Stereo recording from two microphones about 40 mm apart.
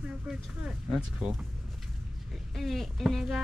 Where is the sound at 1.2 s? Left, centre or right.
Centre.